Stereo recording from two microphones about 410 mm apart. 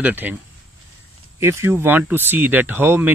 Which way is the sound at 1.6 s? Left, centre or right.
Centre.